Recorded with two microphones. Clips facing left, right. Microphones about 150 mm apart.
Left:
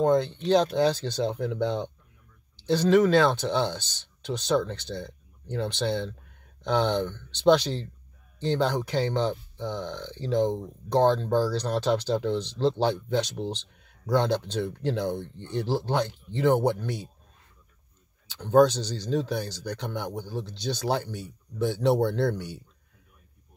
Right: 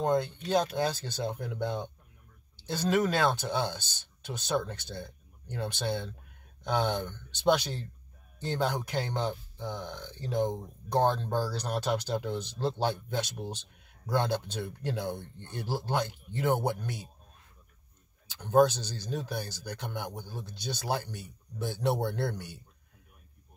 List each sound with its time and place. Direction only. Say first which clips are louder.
0.5 s speech: left 7 dB; 10° right (ahead or behind)
18.5 s speech: left 4 dB; 5° right (ahead or behind)